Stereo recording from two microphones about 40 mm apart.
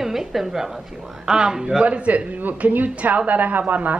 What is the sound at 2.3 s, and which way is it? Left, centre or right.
A woman's voice, right.